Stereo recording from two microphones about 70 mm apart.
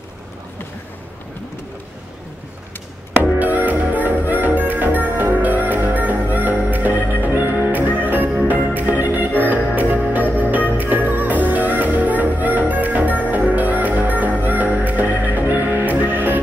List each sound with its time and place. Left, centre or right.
3.2 s music: right
10.8 s music: right